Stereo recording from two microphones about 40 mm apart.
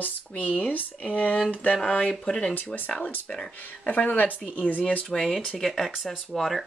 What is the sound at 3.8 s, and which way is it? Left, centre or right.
Speech, left.